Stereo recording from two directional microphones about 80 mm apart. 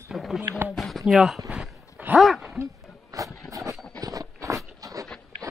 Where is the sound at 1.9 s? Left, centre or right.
Centre.